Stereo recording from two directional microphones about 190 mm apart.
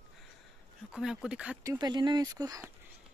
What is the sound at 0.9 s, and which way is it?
Speech, centre (ahead or behind).